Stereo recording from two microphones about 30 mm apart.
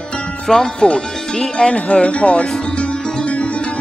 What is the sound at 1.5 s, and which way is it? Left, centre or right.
Speech, left.